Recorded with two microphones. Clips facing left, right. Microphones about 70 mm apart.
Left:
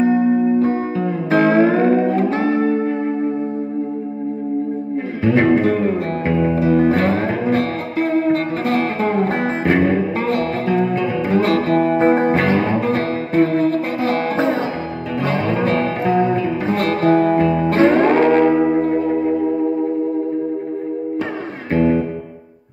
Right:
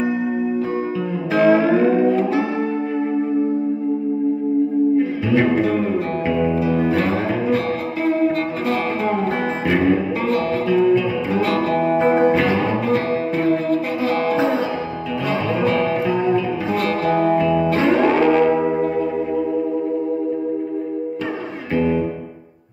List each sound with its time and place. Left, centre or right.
0.1 s music: left
4.9 s music: left
15.6 s music: left
21.7 s music: left